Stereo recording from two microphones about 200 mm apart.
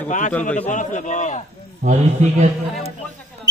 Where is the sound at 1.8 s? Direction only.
35° right (ahead or behind).